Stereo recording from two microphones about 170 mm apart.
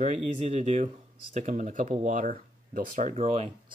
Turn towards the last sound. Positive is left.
turn(degrees=-40)  # may be behind; listen again after turning